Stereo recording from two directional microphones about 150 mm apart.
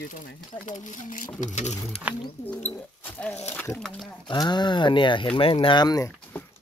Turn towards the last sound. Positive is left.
turn(degrees=25)  # may be behind; listen again after turning